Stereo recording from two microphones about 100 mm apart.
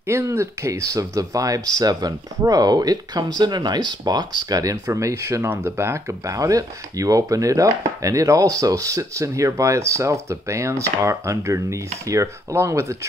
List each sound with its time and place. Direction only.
0.1 s speech: 30° right (ahead or behind)